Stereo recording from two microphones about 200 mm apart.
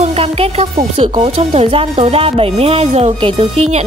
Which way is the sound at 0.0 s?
30° right (ahead or behind).